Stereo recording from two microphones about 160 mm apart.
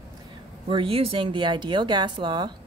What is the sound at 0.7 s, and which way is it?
Speech, 35° right (ahead or behind).